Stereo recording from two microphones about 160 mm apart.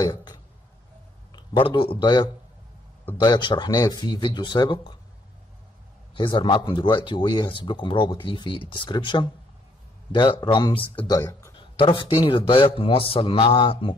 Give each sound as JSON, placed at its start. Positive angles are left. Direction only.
{"t": 0.0, "sound": "burping", "side_deg": 25}
{"t": 1.3, "sound": "a man's voice", "side_deg": 30}
{"t": 6.1, "sound": "a man's voice", "side_deg": 30}